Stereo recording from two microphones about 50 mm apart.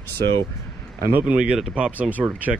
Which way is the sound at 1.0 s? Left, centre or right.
Right.